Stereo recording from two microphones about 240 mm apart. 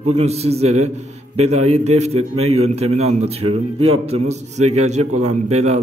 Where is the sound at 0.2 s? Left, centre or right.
Right.